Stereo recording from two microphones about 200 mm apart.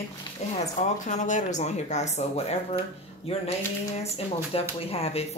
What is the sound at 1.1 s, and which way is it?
A woman's voice, 35° left (ahead or behind).